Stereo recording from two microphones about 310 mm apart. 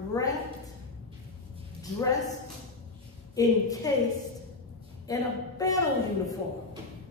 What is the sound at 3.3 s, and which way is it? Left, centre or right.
Speech, centre.